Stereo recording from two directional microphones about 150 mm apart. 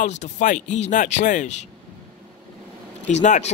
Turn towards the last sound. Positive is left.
turn(degrees=50)  # may be behind; listen again after turning